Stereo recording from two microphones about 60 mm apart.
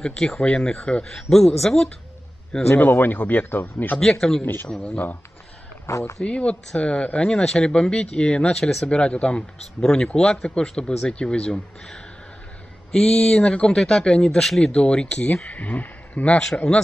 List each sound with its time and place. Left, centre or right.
0.0 s speech: centre
2.8 s speech: left
4.0 s speech: centre
4.4 s speech: left
4.6 s speech: centre
5.9 s speech: left
6.2 s speech: left
8.8 s speech: centre
16.5 s speech: centre